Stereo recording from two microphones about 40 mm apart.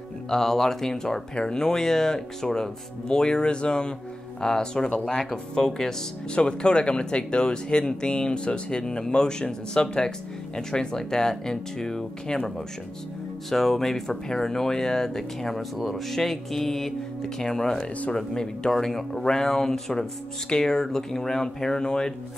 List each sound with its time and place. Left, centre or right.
0.3 s speech: centre
6.3 s speech: left
13.5 s speech: centre